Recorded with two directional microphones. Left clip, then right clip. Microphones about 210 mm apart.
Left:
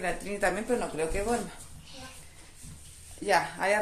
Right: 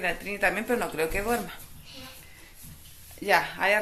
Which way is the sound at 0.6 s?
10° right (ahead or behind).